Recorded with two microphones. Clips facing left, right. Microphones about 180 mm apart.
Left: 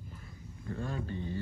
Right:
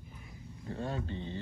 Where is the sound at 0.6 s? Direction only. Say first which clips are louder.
Even; 25° right (ahead or behind).